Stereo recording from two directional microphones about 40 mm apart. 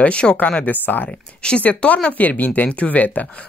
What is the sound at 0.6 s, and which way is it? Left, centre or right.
Speech, left.